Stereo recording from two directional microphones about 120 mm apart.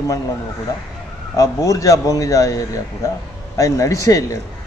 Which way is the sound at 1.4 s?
30° left (ahead or behind).